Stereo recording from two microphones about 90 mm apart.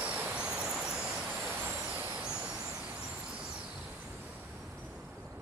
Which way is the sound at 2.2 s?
10° right (ahead or behind).